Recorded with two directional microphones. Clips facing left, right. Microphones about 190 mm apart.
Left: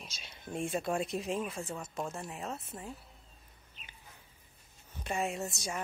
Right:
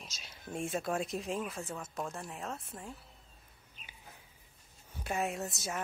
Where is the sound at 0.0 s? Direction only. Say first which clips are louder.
Left 1 dB; centre (ahead or behind).